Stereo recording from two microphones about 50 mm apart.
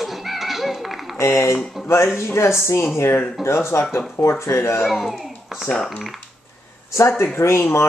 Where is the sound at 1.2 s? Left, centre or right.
Left.